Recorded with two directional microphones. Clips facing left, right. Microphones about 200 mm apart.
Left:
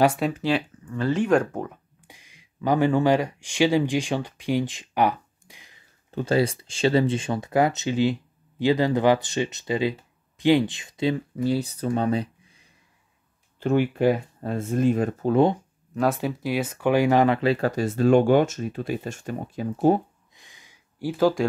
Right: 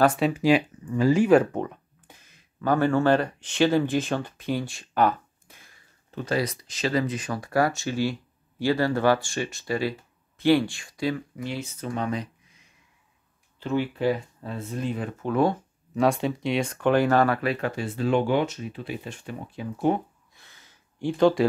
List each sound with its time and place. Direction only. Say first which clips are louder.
0.0 s speech: even; 10° left (ahead or behind)
0.3 s speech: right 4 dB; 10° right (ahead or behind); by 5.8 s 15° left (ahead or behind)
6.1 s speech: left 5 dB; 30° left (ahead or behind)
13.6 s speech: left 5 dB; 50° left (ahead or behind)
15.3 s speech: left 3 dB; 20° left (ahead or behind)
15.9 s speech: right 1 dB; centre (ahead or behind)
17.4 s speech: left 5 dB; 30° left (ahead or behind)
20.3 s a sound: left 2 dB; 15° left (ahead or behind)